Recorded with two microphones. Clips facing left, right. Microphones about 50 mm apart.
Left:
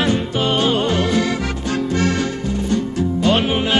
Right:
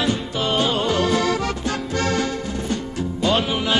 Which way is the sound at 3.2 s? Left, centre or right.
Left.